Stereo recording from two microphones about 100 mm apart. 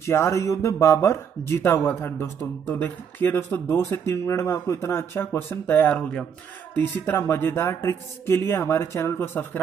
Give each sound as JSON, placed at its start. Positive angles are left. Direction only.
{"t": 0.0, "sound": "speech", "side_deg": 25}